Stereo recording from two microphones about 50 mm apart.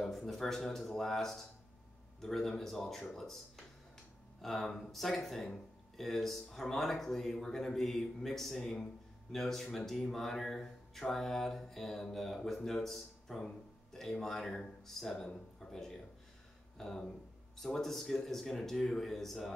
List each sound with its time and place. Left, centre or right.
0.0 s speech: centre